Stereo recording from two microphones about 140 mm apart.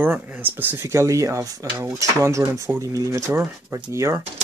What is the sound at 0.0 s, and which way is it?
Speech, 15° right (ahead or behind).